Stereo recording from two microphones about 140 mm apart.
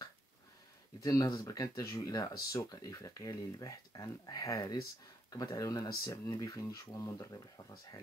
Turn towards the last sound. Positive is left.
turn(degrees=25)  # may be behind; listen again after turning